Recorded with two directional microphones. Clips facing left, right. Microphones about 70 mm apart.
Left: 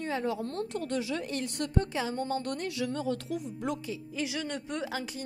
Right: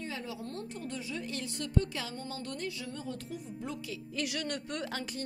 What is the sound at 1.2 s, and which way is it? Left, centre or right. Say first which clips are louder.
Speech: left 5 dB; left.